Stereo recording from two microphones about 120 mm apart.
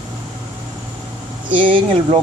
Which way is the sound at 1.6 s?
45° right (ahead or behind).